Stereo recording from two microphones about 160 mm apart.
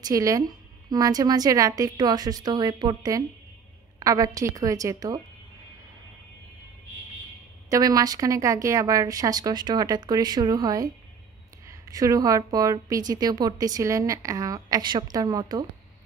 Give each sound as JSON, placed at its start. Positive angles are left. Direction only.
{"t": 0.0, "sound": "a woman's voice", "side_deg": -20}
{"t": 7.7, "sound": "a woman's voice", "side_deg": -20}